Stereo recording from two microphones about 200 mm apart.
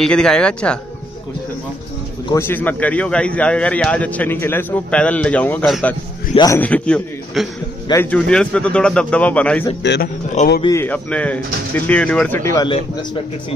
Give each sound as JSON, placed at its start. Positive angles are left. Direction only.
{"t": 0.0, "sound": "speech", "side_deg": 5}
{"t": 2.3, "sound": "a man's voice", "side_deg": 10}
{"t": 12.4, "sound": "speech", "side_deg": 20}